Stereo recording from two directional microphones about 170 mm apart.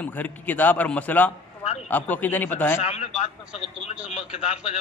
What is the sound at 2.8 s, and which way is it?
A man's voice, 40° left (ahead or behind).